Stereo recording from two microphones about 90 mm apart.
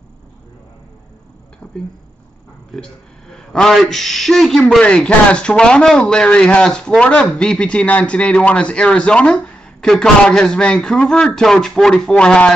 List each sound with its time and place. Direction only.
1.6 s speech: 15° left (ahead or behind)